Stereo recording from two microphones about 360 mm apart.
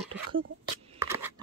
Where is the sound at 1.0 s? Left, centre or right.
Centre.